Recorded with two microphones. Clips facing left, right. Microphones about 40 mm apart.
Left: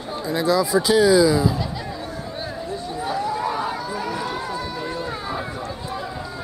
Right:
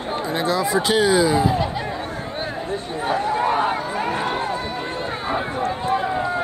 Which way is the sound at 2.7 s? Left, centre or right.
Right.